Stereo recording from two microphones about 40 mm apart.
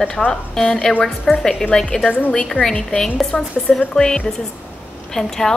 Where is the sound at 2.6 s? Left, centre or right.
Left.